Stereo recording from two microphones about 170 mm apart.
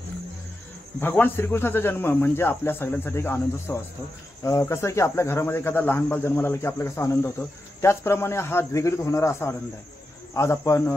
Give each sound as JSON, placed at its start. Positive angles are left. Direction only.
{"t": 1.0, "sound": "speech", "side_deg": 10}